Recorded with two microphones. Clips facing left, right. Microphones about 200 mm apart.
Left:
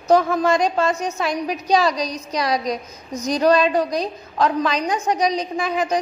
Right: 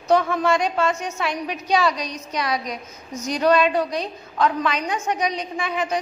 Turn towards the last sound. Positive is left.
turn(degrees=40)  # may be behind; listen again after turning